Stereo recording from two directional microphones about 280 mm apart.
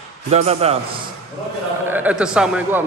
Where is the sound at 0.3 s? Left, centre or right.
Right.